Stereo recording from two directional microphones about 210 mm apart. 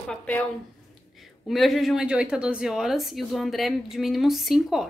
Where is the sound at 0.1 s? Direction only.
5° left (ahead or behind).